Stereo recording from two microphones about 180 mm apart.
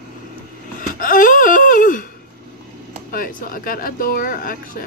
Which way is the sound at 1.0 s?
50° left (ahead or behind).